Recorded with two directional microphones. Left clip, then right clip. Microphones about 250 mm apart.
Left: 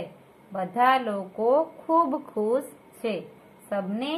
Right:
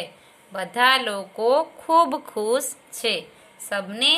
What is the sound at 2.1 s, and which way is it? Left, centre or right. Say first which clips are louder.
Speech: right 2 dB; right.